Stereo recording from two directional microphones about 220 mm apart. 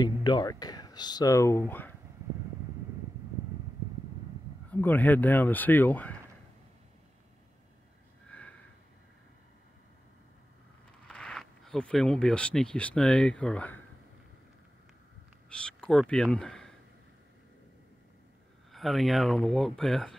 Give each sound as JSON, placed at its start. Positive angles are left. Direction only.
{"t": 0.0, "sound": "speech", "side_deg": 20}
{"t": 4.6, "sound": "speech", "side_deg": 10}
{"t": 8.3, "sound": "sniff", "side_deg": 5}
{"t": 11.1, "sound": "speech", "side_deg": 0}
{"t": 15.5, "sound": "speech", "side_deg": 5}
{"t": 18.7, "sound": "speech", "side_deg": 0}